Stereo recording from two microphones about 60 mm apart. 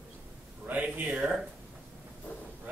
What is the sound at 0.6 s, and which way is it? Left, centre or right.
Speech, right.